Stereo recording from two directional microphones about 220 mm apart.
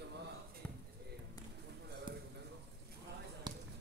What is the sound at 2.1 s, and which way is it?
Clip-clop, 20° right (ahead or behind).